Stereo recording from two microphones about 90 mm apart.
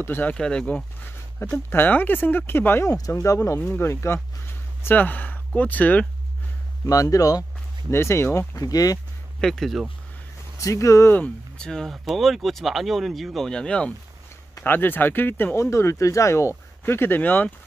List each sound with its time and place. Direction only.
0.0 s speech: 20° left (ahead or behind)
0.4 s speech: 10° left (ahead or behind)
1.0 s speech: 25° left (ahead or behind)
2.9 s speech: 35° left (ahead or behind); by 6.0 s 15° left (ahead or behind)
6.9 s speech: 40° left (ahead or behind)
7.9 s speech: 30° left (ahead or behind)
8.5 s speech: 45° left (ahead or behind)
9.4 s speech: 5° left (ahead or behind)
10.6 s speech: 35° left (ahead or behind)
11.1 s speech: 10° left (ahead or behind)
14.6 s speech: 20° left (ahead or behind)